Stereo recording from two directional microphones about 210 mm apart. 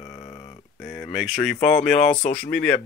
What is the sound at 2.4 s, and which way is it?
Speech, 5° left (ahead or behind).